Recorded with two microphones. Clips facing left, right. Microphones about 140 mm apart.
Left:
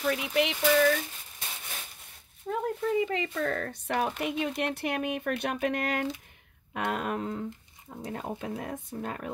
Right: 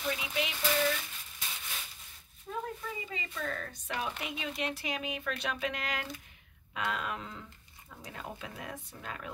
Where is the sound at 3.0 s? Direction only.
65° left (ahead or behind).